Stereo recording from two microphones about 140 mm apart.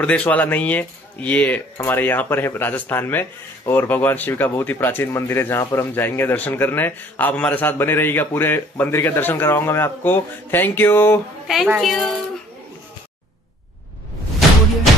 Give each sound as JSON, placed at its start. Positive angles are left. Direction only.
{"t": 0.0, "sound": "speech", "side_deg": 10}
{"t": 11.4, "sound": "a woman's voice", "side_deg": -5}